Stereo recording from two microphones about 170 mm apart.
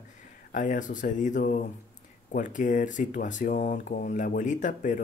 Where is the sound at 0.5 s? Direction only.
50° left (ahead or behind).